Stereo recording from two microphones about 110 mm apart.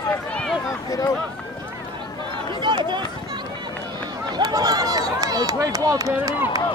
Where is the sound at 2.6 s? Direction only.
45° right (ahead or behind).